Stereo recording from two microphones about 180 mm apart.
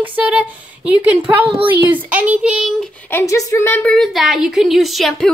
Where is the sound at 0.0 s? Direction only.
10° right (ahead or behind).